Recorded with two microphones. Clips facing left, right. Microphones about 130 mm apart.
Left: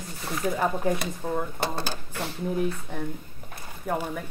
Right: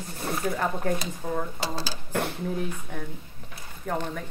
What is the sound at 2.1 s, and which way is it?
Speech, 55° right (ahead or behind).